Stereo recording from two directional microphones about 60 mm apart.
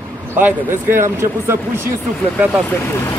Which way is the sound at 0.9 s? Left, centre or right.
Right.